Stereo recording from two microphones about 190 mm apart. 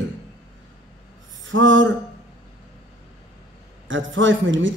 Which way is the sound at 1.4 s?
80° right.